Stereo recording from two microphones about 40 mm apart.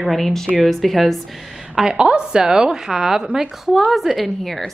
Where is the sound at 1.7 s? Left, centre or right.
Centre.